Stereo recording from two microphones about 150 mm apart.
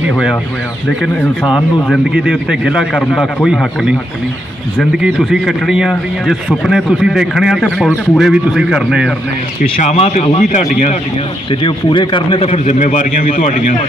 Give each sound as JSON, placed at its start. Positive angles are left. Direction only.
{"t": 1.4, "sound": "a man's voice", "side_deg": 5}
{"t": 2.1, "sound": "speech", "side_deg": -5}
{"t": 4.9, "sound": "speech", "side_deg": -5}
{"t": 9.6, "sound": "speech", "side_deg": 50}
{"t": 11.6, "sound": "a man's voice", "side_deg": 35}